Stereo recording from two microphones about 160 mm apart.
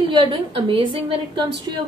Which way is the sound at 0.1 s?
30° right (ahead or behind).